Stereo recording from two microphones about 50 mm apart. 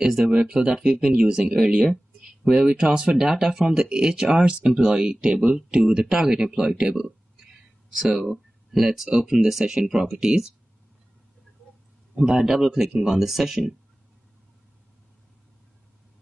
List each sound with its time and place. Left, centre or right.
0.0 s speech: centre
0.3 s speech: right
0.7 s speech: centre
12.2 s speech: centre